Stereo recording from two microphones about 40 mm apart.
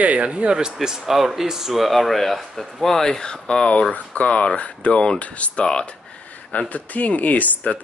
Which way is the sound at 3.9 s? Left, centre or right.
Left.